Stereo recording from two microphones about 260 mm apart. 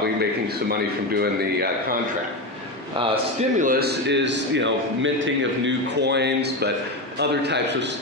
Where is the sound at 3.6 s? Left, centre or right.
Right.